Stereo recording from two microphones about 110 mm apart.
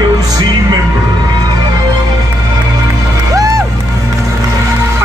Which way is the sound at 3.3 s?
30° right (ahead or behind).